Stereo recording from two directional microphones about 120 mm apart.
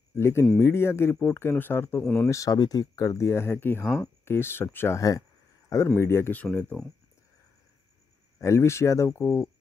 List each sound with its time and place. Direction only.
0.1 s speech: 20° left (ahead or behind)
6.4 s speech: 10° left (ahead or behind)
8.4 s speech: 25° left (ahead or behind)